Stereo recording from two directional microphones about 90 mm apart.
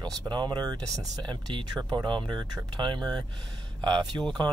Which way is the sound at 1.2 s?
60° right (ahead or behind).